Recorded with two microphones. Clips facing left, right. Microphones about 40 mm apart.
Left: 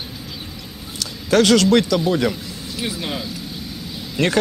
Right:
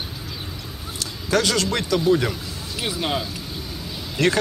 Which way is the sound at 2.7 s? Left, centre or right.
Right.